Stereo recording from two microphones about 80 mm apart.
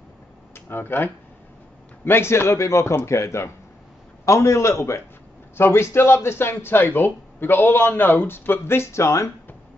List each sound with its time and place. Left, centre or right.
0.7 s a man's voice: left